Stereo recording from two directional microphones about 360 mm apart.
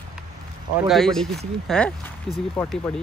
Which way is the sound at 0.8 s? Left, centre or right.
Centre.